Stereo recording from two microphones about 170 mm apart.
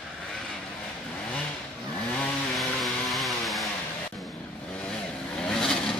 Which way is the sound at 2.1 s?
5° left (ahead or behind).